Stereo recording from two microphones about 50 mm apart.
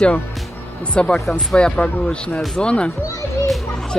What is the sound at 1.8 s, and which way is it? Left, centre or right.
Speech, left.